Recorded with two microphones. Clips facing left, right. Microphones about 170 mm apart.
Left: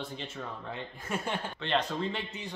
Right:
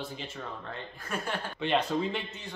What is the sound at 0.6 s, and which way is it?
Speech, 20° left (ahead or behind).